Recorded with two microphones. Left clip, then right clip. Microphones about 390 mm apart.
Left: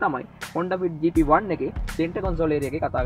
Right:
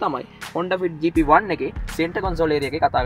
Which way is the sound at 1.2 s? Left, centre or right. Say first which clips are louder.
Right 4 dB; right.